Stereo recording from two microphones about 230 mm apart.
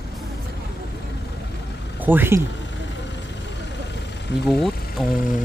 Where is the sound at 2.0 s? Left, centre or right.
Centre.